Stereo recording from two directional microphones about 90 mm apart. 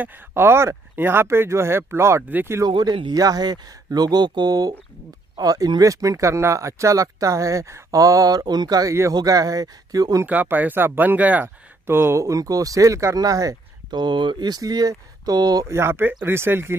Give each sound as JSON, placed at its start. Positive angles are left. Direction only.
{"t": 0.0, "sound": "speech", "side_deg": -25}
{"t": 2.8, "sound": "speech", "side_deg": -55}
{"t": 3.2, "sound": "speech", "side_deg": -45}
{"t": 10.2, "sound": "speech", "side_deg": -20}
{"t": 13.8, "sound": "speech", "side_deg": -55}
{"t": 15.7, "sound": "speech", "side_deg": -25}